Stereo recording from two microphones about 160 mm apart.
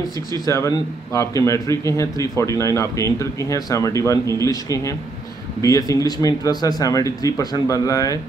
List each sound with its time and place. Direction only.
0.5 s a man's voice: 20° left (ahead or behind)